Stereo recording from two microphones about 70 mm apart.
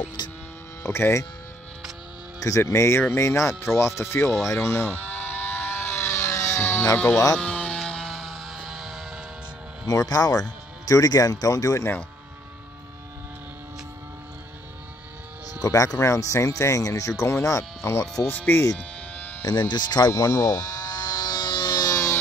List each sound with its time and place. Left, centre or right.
0.2 s a sound: left
0.8 s speech: left
2.4 s speech: left
4.6 s vehicle: centre
7.3 s a sound: centre
9.8 s speech: left
15.6 s speech: left
18.2 s speech: left
18.8 s a sound: left
19.4 s speech: left
20.1 s a sound: left
21.9 s siren: left